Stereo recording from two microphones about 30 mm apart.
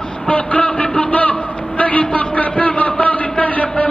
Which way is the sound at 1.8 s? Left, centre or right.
Left.